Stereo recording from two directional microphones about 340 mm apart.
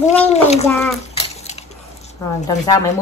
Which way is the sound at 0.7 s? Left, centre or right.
Centre.